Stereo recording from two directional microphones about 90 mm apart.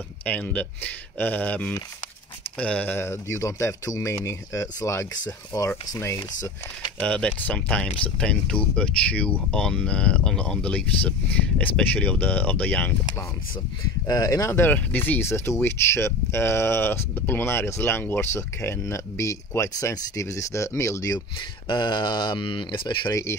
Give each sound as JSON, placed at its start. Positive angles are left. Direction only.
{"t": 0.2, "sound": "speech", "side_deg": 15}
{"t": 7.0, "sound": "speech", "side_deg": 15}
{"t": 14.0, "sound": "speech", "side_deg": 40}
{"t": 14.5, "sound": "speech", "side_deg": 20}
{"t": 21.4, "sound": "speech", "side_deg": 60}